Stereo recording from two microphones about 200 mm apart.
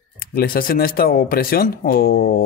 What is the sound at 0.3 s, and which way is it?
Speech, 50° left (ahead or behind).